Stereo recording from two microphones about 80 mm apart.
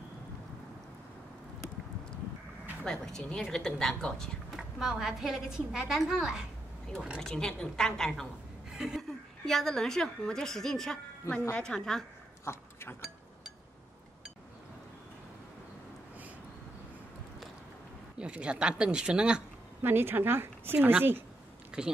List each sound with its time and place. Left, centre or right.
2.8 s a woman's voice: centre
4.5 s a woman's voice: centre
7.2 s a woman's voice: centre
8.6 s a woman's voice: centre
12.5 s speech: left
18.1 s speech: centre
19.8 s a woman's voice: right
21.8 s speech: centre